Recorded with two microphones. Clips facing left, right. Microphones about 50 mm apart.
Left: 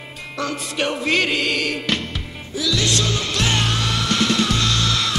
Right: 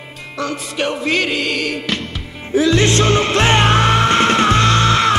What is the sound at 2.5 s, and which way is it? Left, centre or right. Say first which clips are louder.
Music: right 8 dB; right.